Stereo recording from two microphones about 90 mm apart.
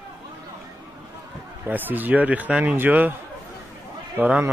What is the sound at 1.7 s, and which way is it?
A man's voice, 20° right (ahead or behind).